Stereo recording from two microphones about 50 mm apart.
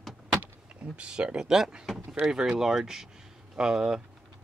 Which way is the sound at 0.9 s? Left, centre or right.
Right.